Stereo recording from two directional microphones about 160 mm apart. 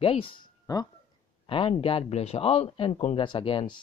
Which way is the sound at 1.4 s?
35° left (ahead or behind).